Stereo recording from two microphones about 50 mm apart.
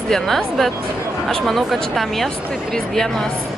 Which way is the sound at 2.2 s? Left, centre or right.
Centre.